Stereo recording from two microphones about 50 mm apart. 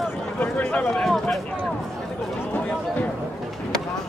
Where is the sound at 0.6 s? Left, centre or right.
Centre.